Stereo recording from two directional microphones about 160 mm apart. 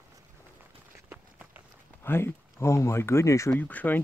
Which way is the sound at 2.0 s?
15° left (ahead or behind).